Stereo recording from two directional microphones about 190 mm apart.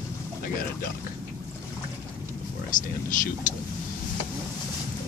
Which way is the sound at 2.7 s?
45° left (ahead or behind).